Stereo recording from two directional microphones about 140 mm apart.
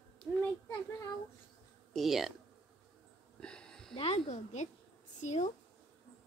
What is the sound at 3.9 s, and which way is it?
Speech, 45° left (ahead or behind).